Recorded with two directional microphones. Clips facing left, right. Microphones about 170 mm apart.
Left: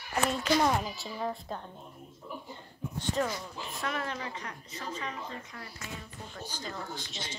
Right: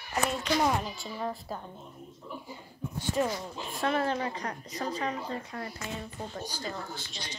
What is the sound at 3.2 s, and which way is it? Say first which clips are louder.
Speech: right 2 dB; 15° right (ahead or behind).